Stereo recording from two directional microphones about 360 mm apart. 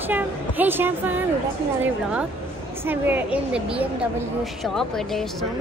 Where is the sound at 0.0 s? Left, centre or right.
Centre.